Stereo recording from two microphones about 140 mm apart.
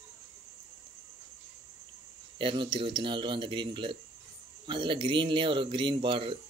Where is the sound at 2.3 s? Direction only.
35° right (ahead or behind).